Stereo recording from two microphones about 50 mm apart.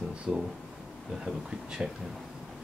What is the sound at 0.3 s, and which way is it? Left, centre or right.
Speech, right.